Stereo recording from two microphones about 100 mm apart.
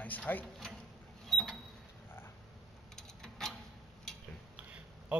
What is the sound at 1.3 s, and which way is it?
Creak, centre (ahead or behind).